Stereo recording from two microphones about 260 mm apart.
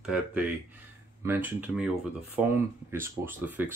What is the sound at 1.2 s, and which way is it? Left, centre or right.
Speech, centre.